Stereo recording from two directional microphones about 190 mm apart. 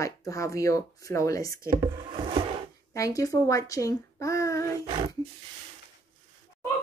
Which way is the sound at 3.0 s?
15° left (ahead or behind).